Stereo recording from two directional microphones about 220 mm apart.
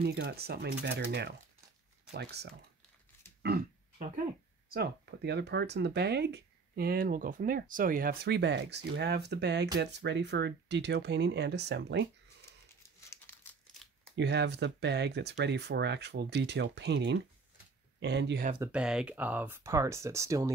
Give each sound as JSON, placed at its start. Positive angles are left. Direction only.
{"t": 0.0, "sound": "speech", "side_deg": -45}
{"t": 4.6, "sound": "speech", "side_deg": -45}
{"t": 13.1, "sound": "crumpling", "side_deg": 10}
{"t": 14.1, "sound": "speech", "side_deg": -50}
{"t": 18.6, "sound": "speech", "side_deg": -5}